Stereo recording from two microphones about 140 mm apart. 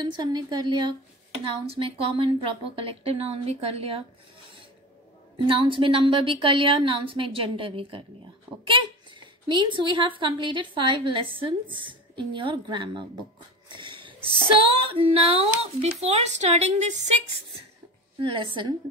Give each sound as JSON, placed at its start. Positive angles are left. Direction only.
{"t": 0.0, "sound": "speech", "side_deg": -30}
{"t": 5.5, "sound": "speech", "side_deg": -40}
{"t": 13.7, "sound": "wheeze", "side_deg": -35}
{"t": 14.5, "sound": "speech", "side_deg": -40}
{"t": 18.2, "sound": "speech", "side_deg": -35}